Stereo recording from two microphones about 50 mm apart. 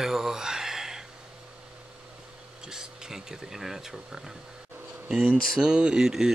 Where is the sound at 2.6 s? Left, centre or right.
Centre.